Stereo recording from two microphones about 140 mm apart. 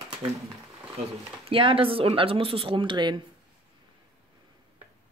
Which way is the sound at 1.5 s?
40° right (ahead or behind).